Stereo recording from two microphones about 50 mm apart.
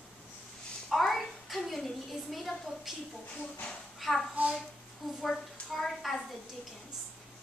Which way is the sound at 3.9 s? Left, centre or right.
Centre.